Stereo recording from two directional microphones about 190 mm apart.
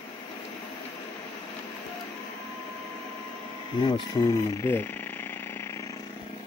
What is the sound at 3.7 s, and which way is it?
Speech, 25° left (ahead or behind).